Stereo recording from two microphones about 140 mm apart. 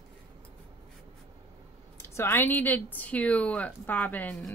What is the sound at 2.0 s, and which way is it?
Speech, 20° left (ahead or behind).